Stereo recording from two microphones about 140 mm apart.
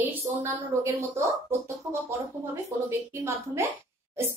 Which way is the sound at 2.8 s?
20° right (ahead or behind).